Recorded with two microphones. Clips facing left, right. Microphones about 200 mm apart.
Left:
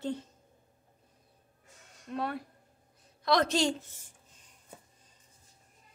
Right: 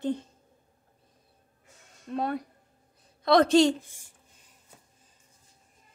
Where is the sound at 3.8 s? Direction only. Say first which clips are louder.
Even; 10° right (ahead or behind).